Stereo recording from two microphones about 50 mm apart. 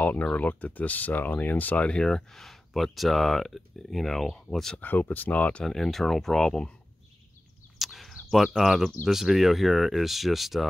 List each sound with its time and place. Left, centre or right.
0.0 s speech: left
1.9 s speech: centre
4.7 s speech: left
5.7 s speech: centre
7.8 s a sound: centre
9.0 s speech: centre